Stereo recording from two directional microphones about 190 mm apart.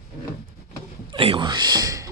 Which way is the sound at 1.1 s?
25° right (ahead or behind).